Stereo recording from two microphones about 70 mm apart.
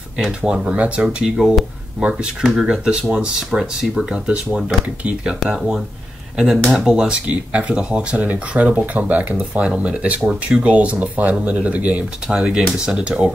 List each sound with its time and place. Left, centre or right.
0.4 s speech: centre
1.0 s speech: centre
3.5 s speech: centre